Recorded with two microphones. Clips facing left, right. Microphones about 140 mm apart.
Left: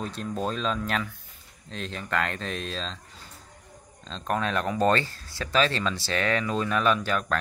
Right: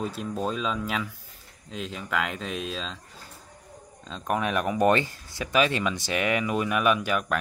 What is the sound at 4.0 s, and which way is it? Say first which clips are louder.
Speech: right 1 dB; 10° right (ahead or behind).